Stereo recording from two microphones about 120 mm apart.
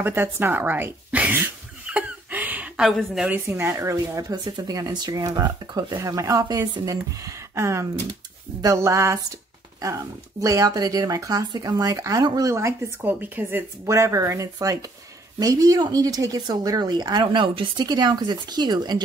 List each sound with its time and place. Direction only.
0.0 s a sound: 15° right (ahead or behind)
2.8 s a woman's voice: centre (ahead or behind)
3.3 s speech: 20° right (ahead or behind); by 19.0 s 35° right (ahead or behind)